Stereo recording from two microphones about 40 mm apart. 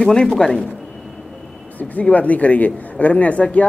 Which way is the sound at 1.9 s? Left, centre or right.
Left.